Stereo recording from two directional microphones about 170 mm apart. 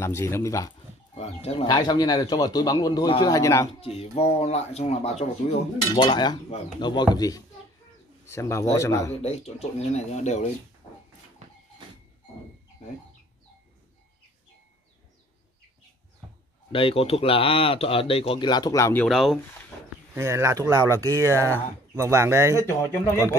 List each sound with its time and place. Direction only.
0.0 s speech: 15° left (ahead or behind)
1.1 s speech: 35° left (ahead or behind)
1.7 s speech: 25° left (ahead or behind)
3.8 s speech: 35° left (ahead or behind); by 9.1 s 15° left (ahead or behind)
9.2 s speech: 40° left (ahead or behind)
16.7 s speech: 35° left (ahead or behind); by 19.0 s 15° left (ahead or behind)
19.0 s speech: centre (ahead or behind)
20.2 s speech: 15° right (ahead or behind)